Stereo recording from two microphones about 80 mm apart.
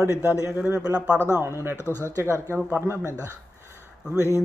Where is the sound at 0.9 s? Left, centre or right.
Centre.